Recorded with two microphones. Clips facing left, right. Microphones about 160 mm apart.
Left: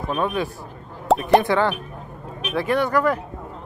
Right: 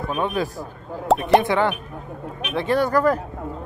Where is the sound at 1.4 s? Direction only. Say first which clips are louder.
Even; 20° right (ahead or behind); by 3.2 s 40° right (ahead or behind).